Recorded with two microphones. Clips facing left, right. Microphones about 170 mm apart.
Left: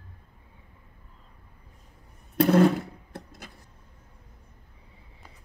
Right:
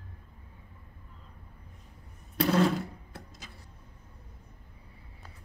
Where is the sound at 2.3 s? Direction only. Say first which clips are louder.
Left 6 dB; 55° left (ahead or behind).